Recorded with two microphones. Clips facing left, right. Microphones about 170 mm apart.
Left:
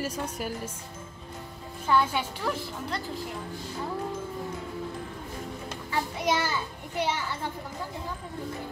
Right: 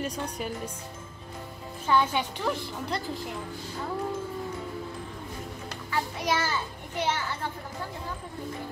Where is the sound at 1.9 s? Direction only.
5° left (ahead or behind).